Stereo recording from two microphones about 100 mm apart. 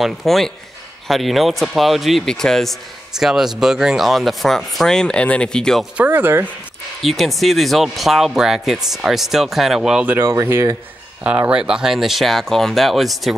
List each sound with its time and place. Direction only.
0.0 s speech: centre (ahead or behind)
5.9 s speech: 20° right (ahead or behind)
7.0 s speech: centre (ahead or behind)
10.3 s speech: 30° right (ahead or behind)
11.2 s speech: 15° right (ahead or behind)